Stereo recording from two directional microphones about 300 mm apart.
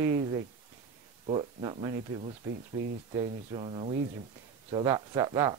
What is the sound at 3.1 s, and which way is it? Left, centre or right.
Speech, centre.